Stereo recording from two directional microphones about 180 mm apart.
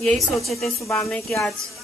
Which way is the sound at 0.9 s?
15° left (ahead or behind).